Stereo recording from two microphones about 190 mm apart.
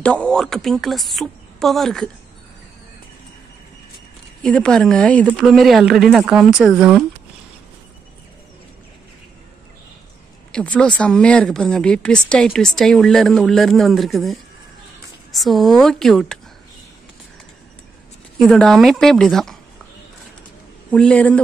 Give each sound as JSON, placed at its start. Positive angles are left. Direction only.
{"t": 0.0, "sound": "speech", "side_deg": 5}
{"t": 4.4, "sound": "speech", "side_deg": 5}
{"t": 10.5, "sound": "speech", "side_deg": 5}
{"t": 18.4, "sound": "speech", "side_deg": 0}
{"t": 20.9, "sound": "a man's voice", "side_deg": 5}